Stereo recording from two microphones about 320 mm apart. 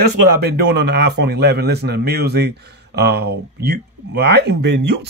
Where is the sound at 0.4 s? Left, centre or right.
Right.